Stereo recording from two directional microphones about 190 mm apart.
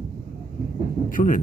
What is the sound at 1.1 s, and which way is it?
Speech, 45° left (ahead or behind).